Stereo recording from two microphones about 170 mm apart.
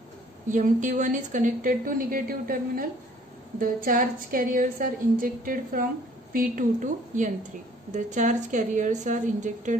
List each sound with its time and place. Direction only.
0.5 s a woman's voice: 50° right (ahead or behind)